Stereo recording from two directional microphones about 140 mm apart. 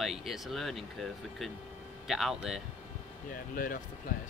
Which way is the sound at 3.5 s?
80° left.